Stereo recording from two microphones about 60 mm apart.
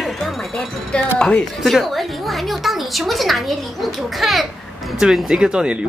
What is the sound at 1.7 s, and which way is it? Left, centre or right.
A woman's voice, centre.